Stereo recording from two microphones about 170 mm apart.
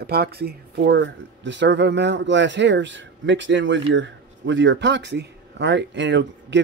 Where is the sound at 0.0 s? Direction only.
70° right (ahead or behind).